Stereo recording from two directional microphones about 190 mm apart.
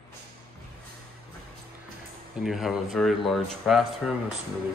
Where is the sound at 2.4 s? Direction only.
Centre (ahead or behind).